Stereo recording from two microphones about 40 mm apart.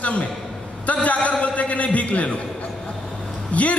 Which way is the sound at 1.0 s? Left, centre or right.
Left.